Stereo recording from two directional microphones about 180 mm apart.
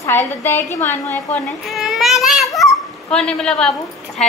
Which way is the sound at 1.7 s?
Centre (ahead or behind).